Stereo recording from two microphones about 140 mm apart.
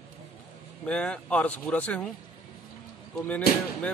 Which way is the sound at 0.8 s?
5° left (ahead or behind).